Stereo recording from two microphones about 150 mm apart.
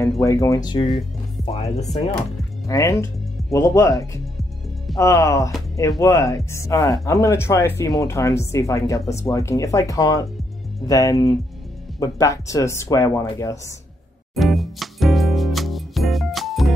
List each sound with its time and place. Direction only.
0.2 s speech: 20° left (ahead or behind)
1.4 s speech: 40° left (ahead or behind)
2.6 s speech: 20° left (ahead or behind)
14.3 s music: centre (ahead or behind)